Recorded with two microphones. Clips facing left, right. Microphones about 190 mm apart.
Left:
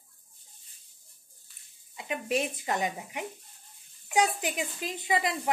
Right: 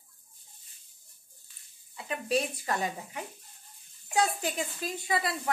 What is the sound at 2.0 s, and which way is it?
Speech, 20° left (ahead or behind).